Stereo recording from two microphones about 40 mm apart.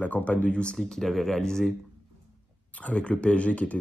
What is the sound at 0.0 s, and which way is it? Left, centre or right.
Speech, left.